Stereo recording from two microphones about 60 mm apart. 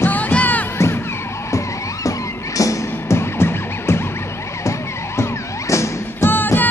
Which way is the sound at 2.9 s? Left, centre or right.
Left.